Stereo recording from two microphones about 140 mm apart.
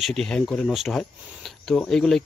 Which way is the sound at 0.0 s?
5° left (ahead or behind).